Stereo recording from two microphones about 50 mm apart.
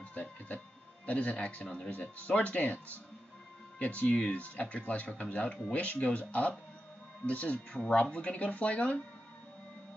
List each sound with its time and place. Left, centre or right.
0.1 s a sound: left
1.0 s speech: left
3.8 s speech: left